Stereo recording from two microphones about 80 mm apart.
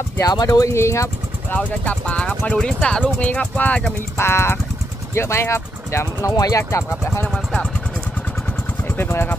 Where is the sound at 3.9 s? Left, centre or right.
Left.